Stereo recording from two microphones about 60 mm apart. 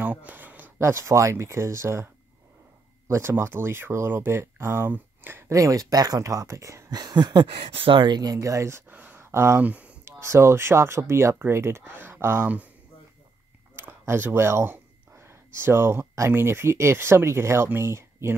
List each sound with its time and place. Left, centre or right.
0.0 s a sound: right
0.7 s speech: right
3.1 s speech: right
5.5 s speech: right
8.2 s speech: right
8.9 s a sound: right
9.2 s a sound: right
9.6 s speech: right
10.0 s speech: right
11.8 s speech: right
13.7 s speech: right